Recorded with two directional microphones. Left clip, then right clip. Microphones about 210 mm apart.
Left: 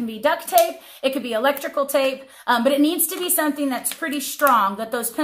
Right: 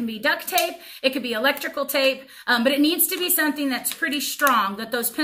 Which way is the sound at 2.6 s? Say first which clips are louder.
Left 1 dB; 15° right (ahead or behind).